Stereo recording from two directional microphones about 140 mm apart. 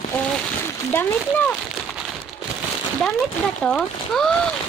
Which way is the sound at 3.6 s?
5° left (ahead or behind).